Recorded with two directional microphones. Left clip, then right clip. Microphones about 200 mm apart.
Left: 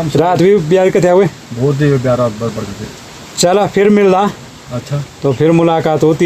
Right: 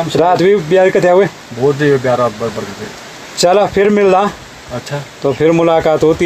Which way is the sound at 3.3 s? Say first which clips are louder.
Right 1 dB; centre (ahead or behind).